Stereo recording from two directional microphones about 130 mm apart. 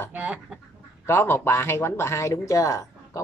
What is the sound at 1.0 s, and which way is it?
Speech, 20° left (ahead or behind).